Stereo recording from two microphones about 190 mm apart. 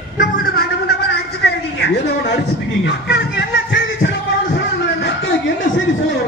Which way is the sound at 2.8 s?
65° left (ahead or behind).